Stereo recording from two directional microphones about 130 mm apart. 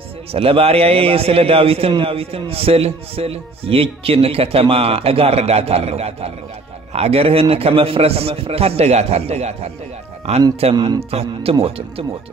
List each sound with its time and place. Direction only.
0.3 s a man's voice: 50° right (ahead or behind)